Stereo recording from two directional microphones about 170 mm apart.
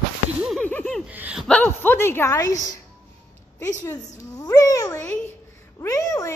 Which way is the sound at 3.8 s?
15° left (ahead or behind).